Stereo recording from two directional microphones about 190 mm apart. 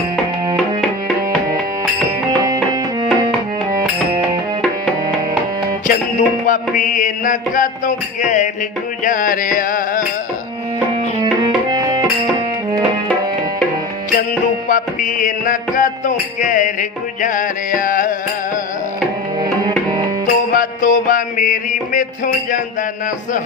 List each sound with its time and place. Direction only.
2.3 s music: 20° right (ahead or behind)
5.9 s music: 45° left (ahead or behind)
11.7 s music: 25° right (ahead or behind)
14.1 s music: 45° left (ahead or behind)
20.5 s music: 45° left (ahead or behind)